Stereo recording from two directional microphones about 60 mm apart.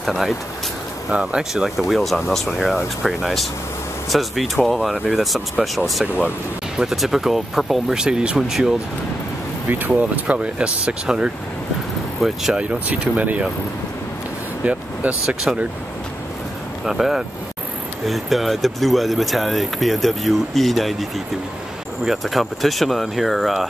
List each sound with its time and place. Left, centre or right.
0.0 s speech: centre
1.1 s speech: centre
6.8 s speech: centre
8.0 s speech: centre
9.7 s speech: right
12.2 s speech: centre
12.5 s speech: centre
14.6 s speech: right
16.8 s speech: centre